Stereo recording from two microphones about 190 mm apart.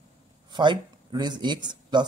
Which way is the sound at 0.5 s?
25° right (ahead or behind).